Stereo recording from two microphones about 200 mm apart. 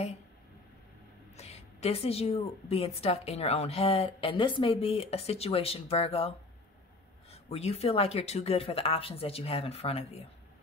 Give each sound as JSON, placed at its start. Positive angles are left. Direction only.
{"t": 1.3, "sound": "a woman's voice", "side_deg": 30}